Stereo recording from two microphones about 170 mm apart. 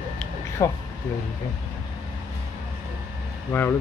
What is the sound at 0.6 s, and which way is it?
Speech, 20° left (ahead or behind).